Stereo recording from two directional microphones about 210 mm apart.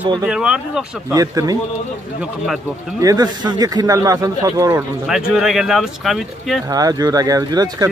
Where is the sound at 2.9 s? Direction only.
20° right (ahead or behind).